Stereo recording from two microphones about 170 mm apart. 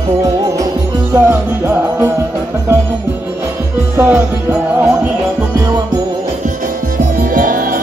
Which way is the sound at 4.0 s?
10° right (ahead or behind).